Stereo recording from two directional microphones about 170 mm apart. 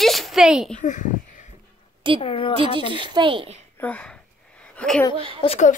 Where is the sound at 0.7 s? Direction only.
50° left (ahead or behind).